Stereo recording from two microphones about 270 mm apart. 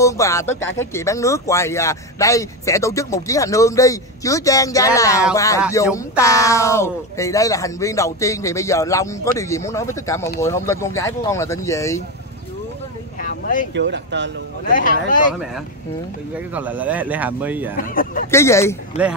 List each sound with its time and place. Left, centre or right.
0.0 s speech: centre
13.2 s a sound: left
13.7 s speech: right
14.7 s speech: left
16.5 s a man's voice: centre
17.7 s speech: left
18.3 s speech: centre